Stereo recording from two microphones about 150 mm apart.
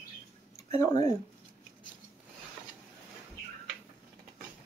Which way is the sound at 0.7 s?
25° left (ahead or behind).